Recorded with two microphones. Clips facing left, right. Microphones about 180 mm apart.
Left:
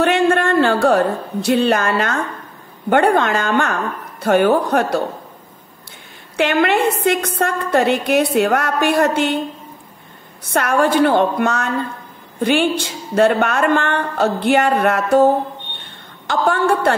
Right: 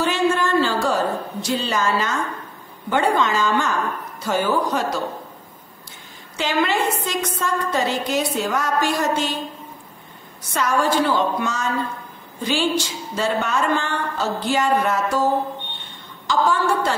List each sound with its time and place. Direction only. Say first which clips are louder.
0.0 s a woman's voice: left 5 dB; 60° left (ahead or behind)
6.3 s a woman's voice: left 5 dB; 60° left (ahead or behind)
10.5 s a woman's voice: left 4 dB; 60° left (ahead or behind)